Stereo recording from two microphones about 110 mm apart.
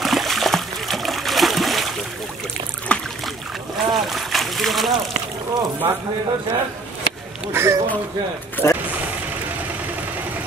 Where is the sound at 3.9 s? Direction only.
Centre (ahead or behind).